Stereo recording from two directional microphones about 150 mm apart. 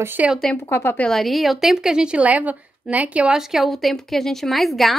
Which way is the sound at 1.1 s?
Centre (ahead or behind).